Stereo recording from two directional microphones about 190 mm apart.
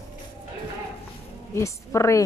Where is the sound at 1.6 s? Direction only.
15° left (ahead or behind).